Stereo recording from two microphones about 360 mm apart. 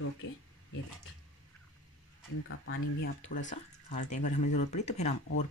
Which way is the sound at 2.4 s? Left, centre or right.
Left.